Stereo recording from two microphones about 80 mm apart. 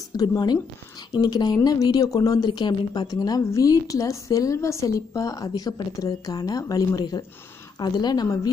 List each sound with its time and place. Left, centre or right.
0.1 s a woman's voice: left